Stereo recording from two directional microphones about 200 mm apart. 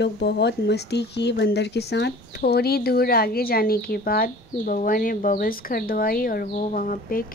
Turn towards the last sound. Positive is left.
turn(degrees=45)  # may be behind; listen again after turning